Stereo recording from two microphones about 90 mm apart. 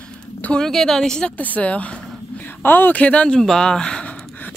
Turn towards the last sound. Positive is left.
turn(degrees=10)  # may be behind; listen again after turning